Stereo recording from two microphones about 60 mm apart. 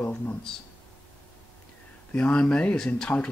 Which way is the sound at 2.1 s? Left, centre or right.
Centre.